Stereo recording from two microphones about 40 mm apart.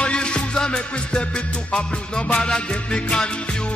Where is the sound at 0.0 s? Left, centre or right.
Left.